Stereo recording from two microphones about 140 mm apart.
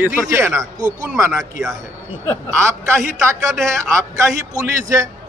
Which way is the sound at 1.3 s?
Centre (ahead or behind).